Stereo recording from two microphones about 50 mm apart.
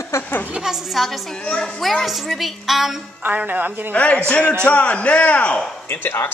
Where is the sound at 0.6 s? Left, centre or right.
Centre.